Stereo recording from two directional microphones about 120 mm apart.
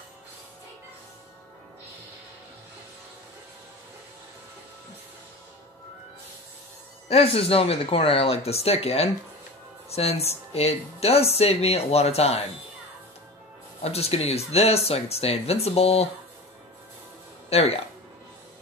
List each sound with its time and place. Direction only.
7.1 s speech: 55° left (ahead or behind)
13.8 s speech: 60° left (ahead or behind)
17.5 s speech: 60° left (ahead or behind)